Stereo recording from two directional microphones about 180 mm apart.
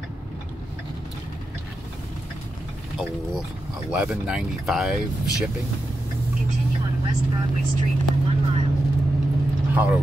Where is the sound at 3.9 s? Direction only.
5° right (ahead or behind).